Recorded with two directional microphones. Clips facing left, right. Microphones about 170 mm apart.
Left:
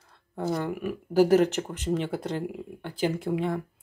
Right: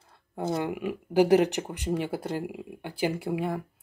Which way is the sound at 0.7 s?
15° right (ahead or behind).